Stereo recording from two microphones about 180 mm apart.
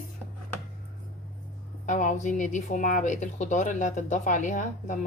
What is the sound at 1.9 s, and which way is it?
A woman's voice, 45° left (ahead or behind).